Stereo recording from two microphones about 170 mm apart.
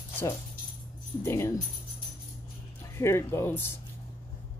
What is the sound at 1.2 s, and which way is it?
Speech, 15° left (ahead or behind).